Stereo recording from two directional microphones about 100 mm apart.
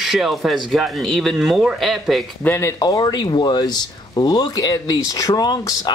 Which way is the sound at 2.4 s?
25° left (ahead or behind).